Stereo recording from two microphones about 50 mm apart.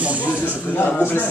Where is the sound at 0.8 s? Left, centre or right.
Left.